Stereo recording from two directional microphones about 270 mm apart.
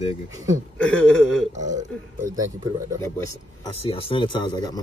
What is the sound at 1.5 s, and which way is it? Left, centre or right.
Speech, right.